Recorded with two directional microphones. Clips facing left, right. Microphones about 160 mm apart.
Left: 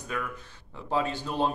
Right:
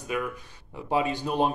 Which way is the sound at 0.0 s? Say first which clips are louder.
Right 4 dB; 15° right (ahead or behind).